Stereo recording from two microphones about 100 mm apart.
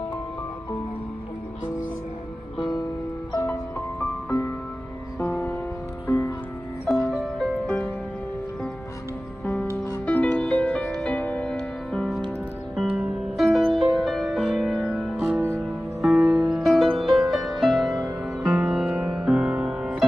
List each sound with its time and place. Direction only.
4.0 s music: 20° left (ahead or behind)
7.1 s music: 5° left (ahead or behind)
7.6 s music: 15° left (ahead or behind)
10.0 s music: 15° left (ahead or behind); by 20.1 s 10° right (ahead or behind)